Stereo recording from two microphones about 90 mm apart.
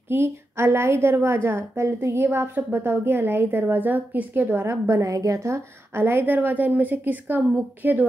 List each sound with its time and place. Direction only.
0.1 s a woman's voice: 25° right (ahead or behind)